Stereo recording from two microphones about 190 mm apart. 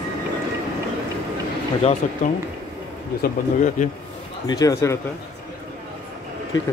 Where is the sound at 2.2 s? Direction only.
45° left (ahead or behind).